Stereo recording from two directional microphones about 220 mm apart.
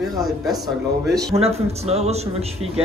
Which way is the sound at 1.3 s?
25° right (ahead or behind).